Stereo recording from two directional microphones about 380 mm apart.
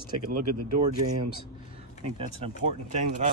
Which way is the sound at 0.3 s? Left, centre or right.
Right.